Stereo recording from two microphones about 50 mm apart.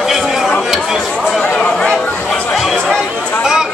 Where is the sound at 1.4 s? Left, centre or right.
Left.